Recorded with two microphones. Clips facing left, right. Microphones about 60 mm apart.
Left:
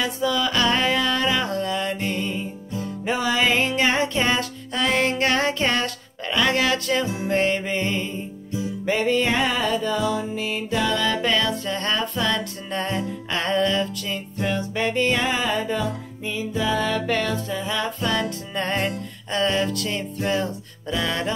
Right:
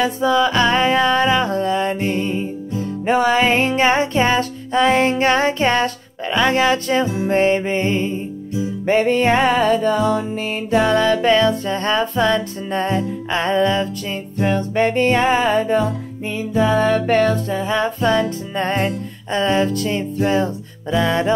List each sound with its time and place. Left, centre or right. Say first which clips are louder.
0.0 s music: right 7 dB; right
2.8 s music: right 8 dB; right
8.8 s music: right 6 dB; right
14.4 s music: right 7 dB; right